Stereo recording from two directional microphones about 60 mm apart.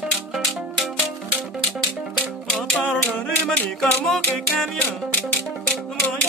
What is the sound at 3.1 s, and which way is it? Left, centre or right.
Music, left.